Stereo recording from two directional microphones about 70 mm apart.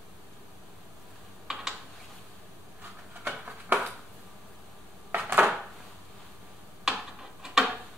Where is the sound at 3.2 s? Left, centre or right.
Centre.